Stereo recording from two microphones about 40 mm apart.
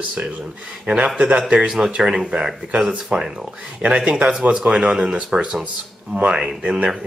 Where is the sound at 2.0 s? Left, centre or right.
Centre.